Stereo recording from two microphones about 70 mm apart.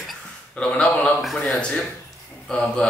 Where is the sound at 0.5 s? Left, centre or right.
Centre.